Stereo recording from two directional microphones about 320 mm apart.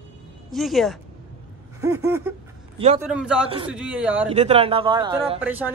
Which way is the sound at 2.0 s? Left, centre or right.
Centre.